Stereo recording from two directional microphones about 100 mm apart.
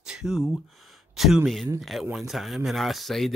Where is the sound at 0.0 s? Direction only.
5° right (ahead or behind).